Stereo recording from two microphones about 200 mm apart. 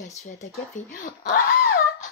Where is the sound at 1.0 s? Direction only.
40° left (ahead or behind).